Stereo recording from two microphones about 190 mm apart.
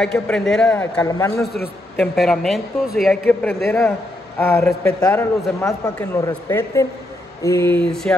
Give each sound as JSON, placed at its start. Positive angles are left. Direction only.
{"t": 0.0, "sound": "a man's voice", "side_deg": 5}
{"t": 1.0, "sound": "a man's voice", "side_deg": 15}
{"t": 2.0, "sound": "a man's voice", "side_deg": 0}